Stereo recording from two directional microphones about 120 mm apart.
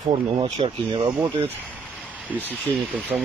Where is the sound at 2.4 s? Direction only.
10° right (ahead or behind).